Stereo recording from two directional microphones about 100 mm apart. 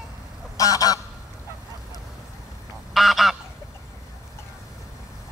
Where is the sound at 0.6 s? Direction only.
35° left (ahead or behind).